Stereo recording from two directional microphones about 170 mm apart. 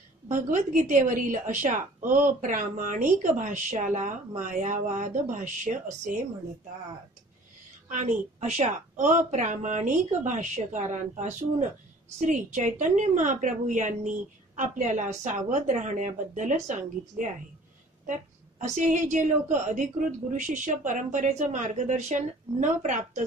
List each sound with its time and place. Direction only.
0.3 s a woman's voice: 45° right (ahead or behind)
7.9 s a woman's voice: 45° right (ahead or behind)
18.6 s a woman's voice: 45° right (ahead or behind)